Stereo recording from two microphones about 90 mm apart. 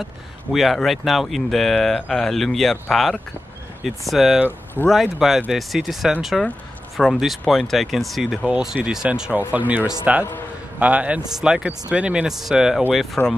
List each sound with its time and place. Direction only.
0.0 s speech: centre (ahead or behind)
8.5 s speech: 15° right (ahead or behind)
9.5 s speech: 20° right (ahead or behind); by 13.2 s centre (ahead or behind)